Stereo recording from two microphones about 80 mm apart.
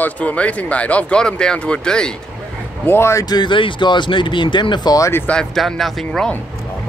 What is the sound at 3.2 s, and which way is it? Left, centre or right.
Speech, left.